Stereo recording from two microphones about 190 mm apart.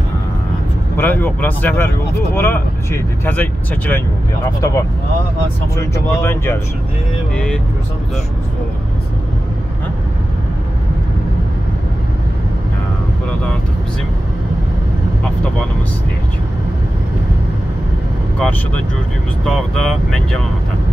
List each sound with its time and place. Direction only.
0.9 s speech: 10° left (ahead or behind)
19.4 s speech: 5° left (ahead or behind)